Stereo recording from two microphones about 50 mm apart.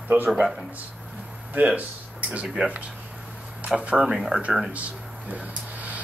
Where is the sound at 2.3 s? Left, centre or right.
Centre.